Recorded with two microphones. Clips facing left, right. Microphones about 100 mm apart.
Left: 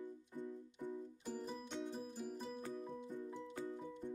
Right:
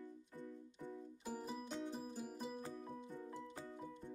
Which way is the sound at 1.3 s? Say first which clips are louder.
Even; 5° right (ahead or behind).